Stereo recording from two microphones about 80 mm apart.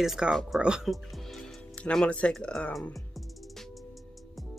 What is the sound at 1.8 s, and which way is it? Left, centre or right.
Speech, centre.